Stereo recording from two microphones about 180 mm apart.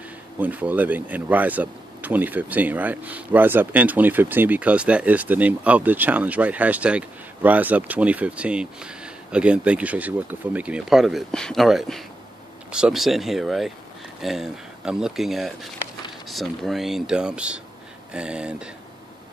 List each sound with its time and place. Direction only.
0.4 s speech: 10° right (ahead or behind)